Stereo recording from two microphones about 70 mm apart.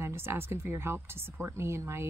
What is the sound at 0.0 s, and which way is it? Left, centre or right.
A woman's voice, right.